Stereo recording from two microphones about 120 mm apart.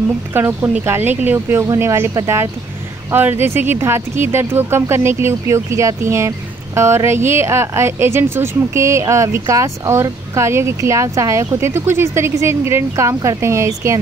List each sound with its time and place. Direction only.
0.3 s speech: 20° right (ahead or behind)